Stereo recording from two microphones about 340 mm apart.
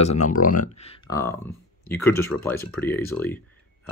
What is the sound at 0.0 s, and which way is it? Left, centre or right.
Speech, centre.